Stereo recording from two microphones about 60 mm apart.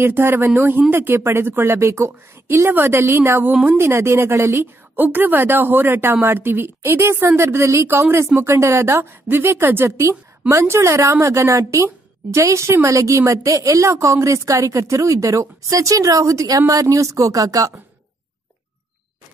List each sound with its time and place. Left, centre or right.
0.0 s speech: right
1.8 s a woman's voice: right
4.9 s a woman's voice: right
16.9 s speech: right